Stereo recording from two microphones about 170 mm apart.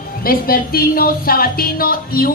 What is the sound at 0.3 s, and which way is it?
A woman's voice, 60° left (ahead or behind).